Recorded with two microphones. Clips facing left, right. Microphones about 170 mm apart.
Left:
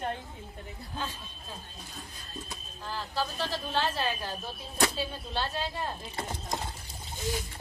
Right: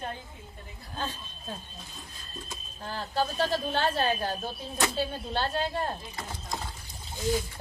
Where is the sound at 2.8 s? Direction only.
50° right (ahead or behind).